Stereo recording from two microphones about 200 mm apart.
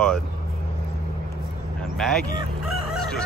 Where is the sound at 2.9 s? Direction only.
5° left (ahead or behind).